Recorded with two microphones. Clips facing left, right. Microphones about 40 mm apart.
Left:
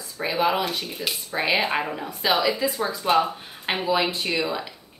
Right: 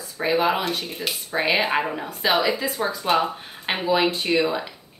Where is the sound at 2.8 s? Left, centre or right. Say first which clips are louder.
Even; centre.